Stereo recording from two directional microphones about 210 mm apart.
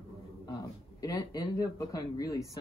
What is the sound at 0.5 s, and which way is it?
Speech, 20° left (ahead or behind).